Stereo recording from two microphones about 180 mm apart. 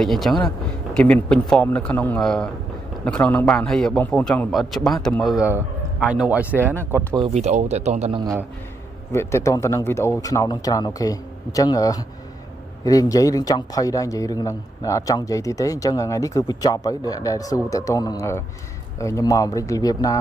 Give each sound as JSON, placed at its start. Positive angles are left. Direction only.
{"t": 0.0, "sound": "a man's voice", "side_deg": 0}
{"t": 7.3, "sound": "speech", "side_deg": -40}
{"t": 8.2, "sound": "a man's voice", "side_deg": -20}
{"t": 9.1, "sound": "a man's voice", "side_deg": 15}